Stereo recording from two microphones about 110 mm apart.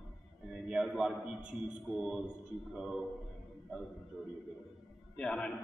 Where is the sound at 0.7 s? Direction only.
5° right (ahead or behind).